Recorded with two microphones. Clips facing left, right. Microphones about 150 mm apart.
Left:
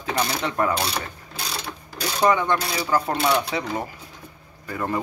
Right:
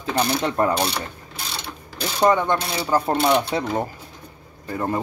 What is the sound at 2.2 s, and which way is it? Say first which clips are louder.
Mechanisms: right 2 dB; 25° right (ahead or behind).